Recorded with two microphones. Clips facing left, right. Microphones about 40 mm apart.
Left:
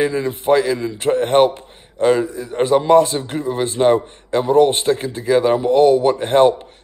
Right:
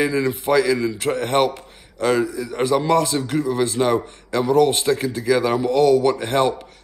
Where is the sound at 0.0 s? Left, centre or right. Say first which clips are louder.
Left 1 dB; left.